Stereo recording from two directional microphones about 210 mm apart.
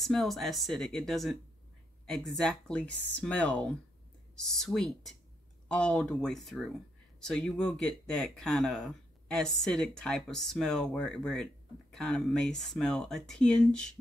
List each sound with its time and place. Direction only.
0.0 s speech: centre (ahead or behind)